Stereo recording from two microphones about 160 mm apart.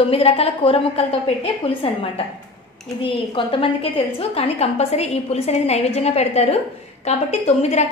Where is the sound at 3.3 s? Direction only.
35° left (ahead or behind).